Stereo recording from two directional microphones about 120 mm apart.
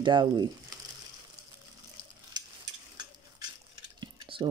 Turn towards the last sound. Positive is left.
turn(degrees=-45)  # may be behind; listen again after turning